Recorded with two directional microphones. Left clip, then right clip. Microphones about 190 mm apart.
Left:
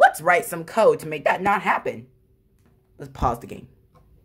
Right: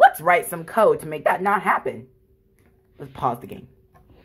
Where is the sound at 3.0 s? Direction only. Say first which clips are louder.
Even; 15° left (ahead or behind).